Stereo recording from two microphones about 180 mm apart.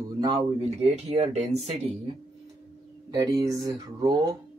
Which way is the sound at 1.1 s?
35° right (ahead or behind).